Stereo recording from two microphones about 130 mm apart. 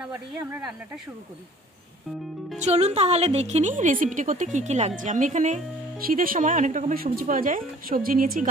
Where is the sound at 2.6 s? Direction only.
55° right (ahead or behind).